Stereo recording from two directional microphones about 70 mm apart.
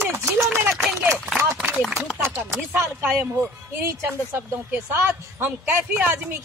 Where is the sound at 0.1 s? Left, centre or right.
Right.